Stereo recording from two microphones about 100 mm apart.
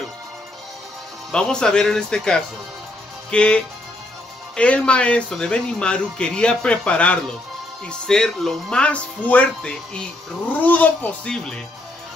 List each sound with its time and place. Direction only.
1.3 s speech: 5° left (ahead or behind)